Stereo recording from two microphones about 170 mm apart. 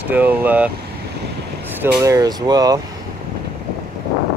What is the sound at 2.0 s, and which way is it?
Speech, 20° right (ahead or behind).